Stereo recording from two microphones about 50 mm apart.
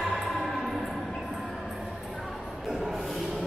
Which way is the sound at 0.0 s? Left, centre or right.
Centre.